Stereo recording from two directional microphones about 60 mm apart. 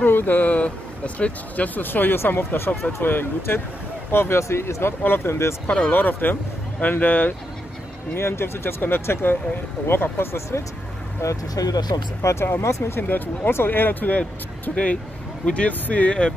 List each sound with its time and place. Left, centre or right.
0.0 s speech: left
5.7 s speech: left
5.9 s speech: left
8.1 s speech: left
11.5 s speech: left
11.9 s speech: left
12.9 s speech: left
15.4 s speech: centre